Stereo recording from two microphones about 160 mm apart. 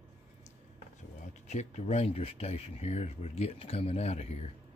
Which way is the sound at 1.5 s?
45° left (ahead or behind).